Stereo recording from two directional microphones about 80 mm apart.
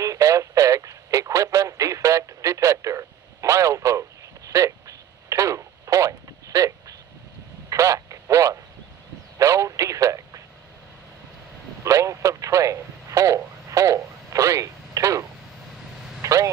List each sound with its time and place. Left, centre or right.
0.0 s radio: right
4.5 s telephone: right
9.4 s radio: right
11.8 s radio: right
16.2 s vehicle: right